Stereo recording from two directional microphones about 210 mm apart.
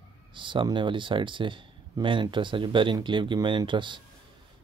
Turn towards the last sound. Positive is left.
turn(degrees=-20)  # may be behind; listen again after turning